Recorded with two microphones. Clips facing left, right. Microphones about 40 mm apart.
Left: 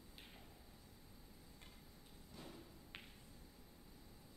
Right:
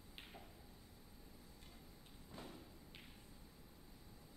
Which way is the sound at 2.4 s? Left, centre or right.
Centre.